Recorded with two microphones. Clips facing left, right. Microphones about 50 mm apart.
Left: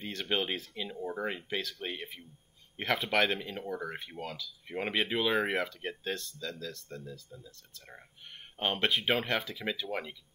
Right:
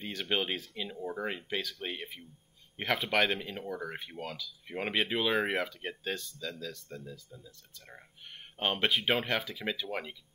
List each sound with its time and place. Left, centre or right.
0.0 s speech: centre